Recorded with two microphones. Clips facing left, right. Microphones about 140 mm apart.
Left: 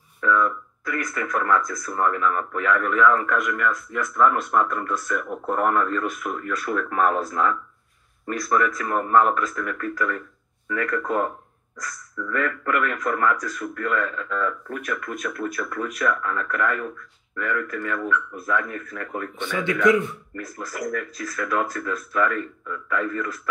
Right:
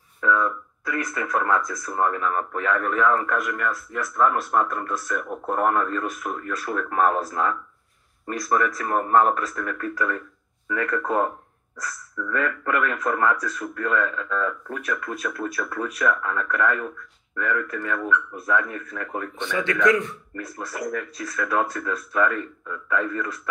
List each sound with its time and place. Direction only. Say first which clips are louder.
0.2 s speech: left 1 dB; 25° right (ahead or behind)
19.8 s speech: left 2 dB; 5° left (ahead or behind)
20.3 s speech: right 1 dB; 25° right (ahead or behind)